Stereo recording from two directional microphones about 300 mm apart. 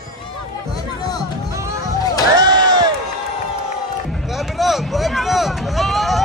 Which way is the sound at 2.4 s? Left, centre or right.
Centre.